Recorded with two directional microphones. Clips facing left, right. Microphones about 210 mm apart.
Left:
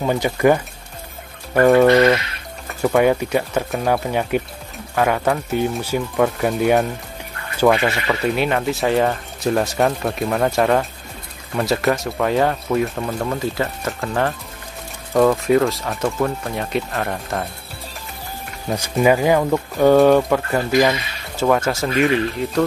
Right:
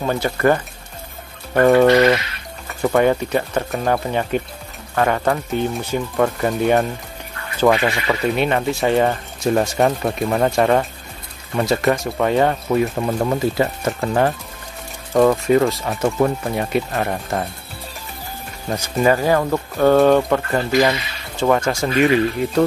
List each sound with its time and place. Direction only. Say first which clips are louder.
0.0 s speech: left 1 dB; 15° left (ahead or behind)
1.5 s speech: even; centre (ahead or behind)
2.8 s speech: even; 5° left (ahead or behind)
12.9 s speech: right 3 dB; 15° right (ahead or behind)
15.1 s speech: right 1 dB; centre (ahead or behind)
16.2 s speech: right 3 dB; 15° right (ahead or behind)
19.0 s speech: left 1 dB; 10° left (ahead or behind)